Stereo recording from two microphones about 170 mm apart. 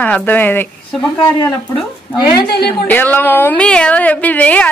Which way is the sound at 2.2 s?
65° left (ahead or behind).